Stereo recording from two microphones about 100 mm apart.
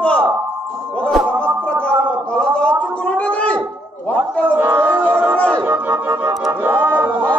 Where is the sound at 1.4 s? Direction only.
15° left (ahead or behind).